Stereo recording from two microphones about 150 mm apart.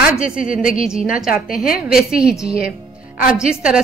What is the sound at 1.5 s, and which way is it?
Speech, 70° left (ahead or behind).